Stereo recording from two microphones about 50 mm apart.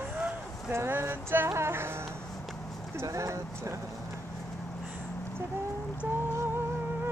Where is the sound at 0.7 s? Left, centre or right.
Right.